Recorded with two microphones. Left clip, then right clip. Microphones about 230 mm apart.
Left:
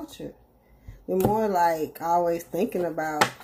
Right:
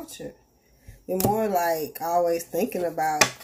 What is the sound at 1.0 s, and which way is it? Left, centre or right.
Speech, centre.